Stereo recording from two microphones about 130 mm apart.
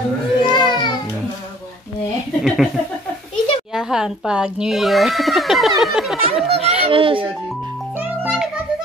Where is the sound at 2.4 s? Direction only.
5° right (ahead or behind).